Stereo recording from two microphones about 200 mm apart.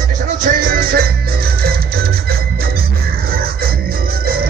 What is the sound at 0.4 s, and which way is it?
Music, 45° right (ahead or behind).